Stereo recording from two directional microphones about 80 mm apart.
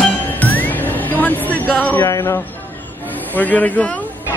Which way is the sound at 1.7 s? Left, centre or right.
Centre.